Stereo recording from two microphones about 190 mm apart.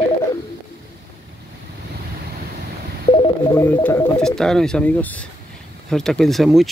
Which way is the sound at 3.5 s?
10° left (ahead or behind).